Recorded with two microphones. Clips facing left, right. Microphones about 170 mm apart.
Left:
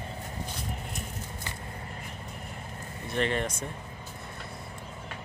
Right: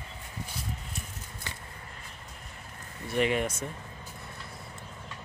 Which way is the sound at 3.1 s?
10° right (ahead or behind).